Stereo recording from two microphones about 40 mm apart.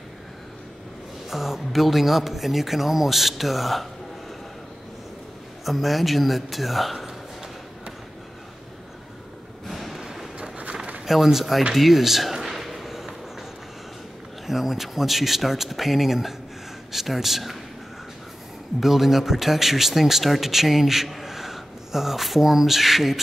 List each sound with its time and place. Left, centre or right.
1.3 s speech: centre
5.7 s speech: centre
9.7 s a sound: centre
10.0 s vehicle: centre
11.1 s speech: centre
11.7 s a sound: centre
14.4 s speech: centre
18.8 s speech: centre